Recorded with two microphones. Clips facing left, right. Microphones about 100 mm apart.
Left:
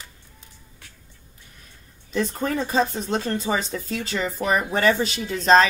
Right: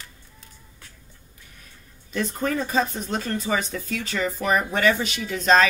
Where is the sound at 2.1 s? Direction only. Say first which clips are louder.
Left 1 dB; 30° left (ahead or behind).